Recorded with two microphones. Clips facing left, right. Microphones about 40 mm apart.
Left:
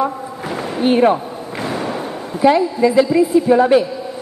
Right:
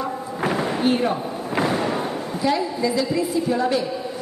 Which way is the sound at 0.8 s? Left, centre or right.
Left.